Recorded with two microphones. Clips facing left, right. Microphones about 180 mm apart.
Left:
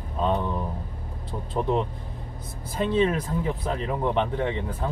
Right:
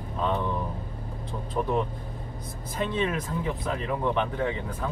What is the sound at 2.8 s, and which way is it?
Speech, 30° left (ahead or behind).